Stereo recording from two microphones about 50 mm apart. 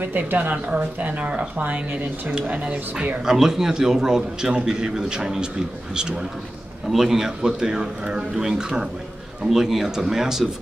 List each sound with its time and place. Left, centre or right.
0.0 s speech: right
2.7 s speech: centre
3.3 s a man's voice: centre
6.9 s a man's voice: centre